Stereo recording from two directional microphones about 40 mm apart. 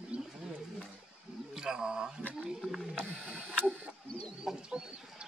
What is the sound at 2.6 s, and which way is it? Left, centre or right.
Speech, centre.